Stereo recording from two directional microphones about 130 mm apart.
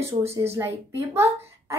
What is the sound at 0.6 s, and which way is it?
A woman's voice, 20° right (ahead or behind).